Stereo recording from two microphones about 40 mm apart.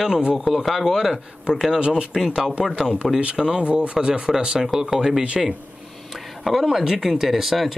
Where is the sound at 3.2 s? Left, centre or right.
Right.